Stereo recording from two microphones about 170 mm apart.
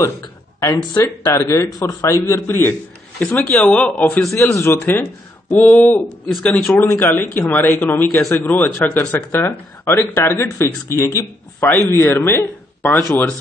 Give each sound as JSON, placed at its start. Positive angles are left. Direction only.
{"t": 0.0, "sound": "speech", "side_deg": 20}